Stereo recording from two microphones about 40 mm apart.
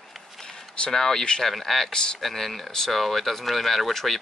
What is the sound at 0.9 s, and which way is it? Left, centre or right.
Speech, centre.